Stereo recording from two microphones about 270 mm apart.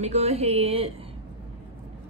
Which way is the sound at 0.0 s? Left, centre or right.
Right.